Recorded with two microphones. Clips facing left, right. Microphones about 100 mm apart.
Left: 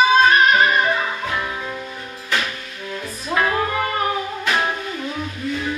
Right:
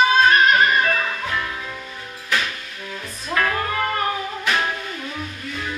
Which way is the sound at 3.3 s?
15° left (ahead or behind).